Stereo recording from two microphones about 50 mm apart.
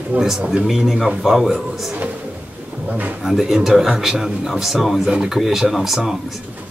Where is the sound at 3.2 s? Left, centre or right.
Centre.